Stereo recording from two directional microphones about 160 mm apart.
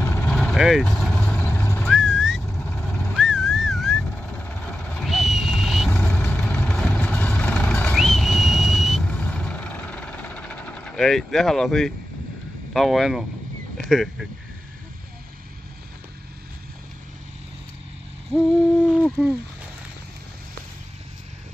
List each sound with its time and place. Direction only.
0.3 s vehicle: 5° left (ahead or behind)
1.4 s vehicle: 15° left (ahead or behind)
1.8 s whistling: centre (ahead or behind)
2.6 s vehicle: centre (ahead or behind)
5.0 s vehicle: centre (ahead or behind)
12.7 s speech: centre (ahead or behind)
18.9 s speech: 5° left (ahead or behind)